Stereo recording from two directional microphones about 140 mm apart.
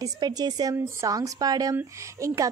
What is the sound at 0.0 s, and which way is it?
A woman's voice, 30° right (ahead or behind).